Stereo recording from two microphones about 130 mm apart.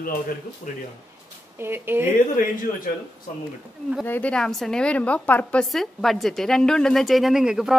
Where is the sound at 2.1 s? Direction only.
90° left.